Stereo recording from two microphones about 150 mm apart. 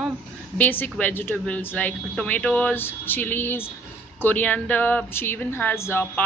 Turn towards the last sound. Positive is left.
turn(degrees=15)  # may be behind; listen again after turning